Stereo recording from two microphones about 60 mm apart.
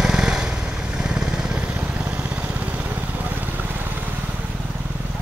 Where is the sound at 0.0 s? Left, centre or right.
Centre; by 4.0 s right.